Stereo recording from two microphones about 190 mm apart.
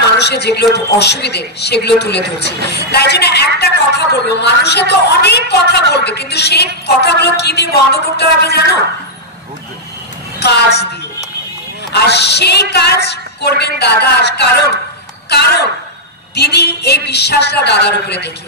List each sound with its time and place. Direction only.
0.2 s a woman's voice: 60° left (ahead or behind)
10.4 s a woman's voice: 60° left (ahead or behind)
11.9 s a woman's voice: 60° left (ahead or behind)